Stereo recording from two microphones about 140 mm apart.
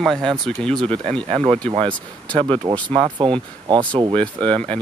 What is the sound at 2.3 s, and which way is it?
Speech, 35° right (ahead or behind).